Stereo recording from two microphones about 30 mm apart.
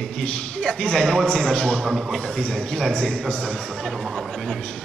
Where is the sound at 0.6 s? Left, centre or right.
Left.